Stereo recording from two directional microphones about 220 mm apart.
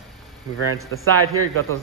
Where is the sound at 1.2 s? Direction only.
75° right (ahead or behind).